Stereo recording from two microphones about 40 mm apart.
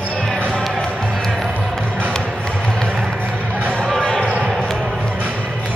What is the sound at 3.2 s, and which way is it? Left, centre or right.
Music, right.